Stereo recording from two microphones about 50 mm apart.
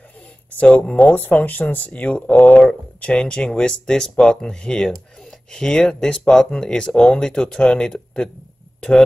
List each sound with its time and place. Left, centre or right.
0.7 s speech: left
1.4 s speech: left; by 8.3 s centre